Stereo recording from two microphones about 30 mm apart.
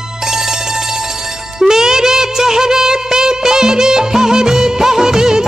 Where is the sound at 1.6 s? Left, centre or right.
Centre.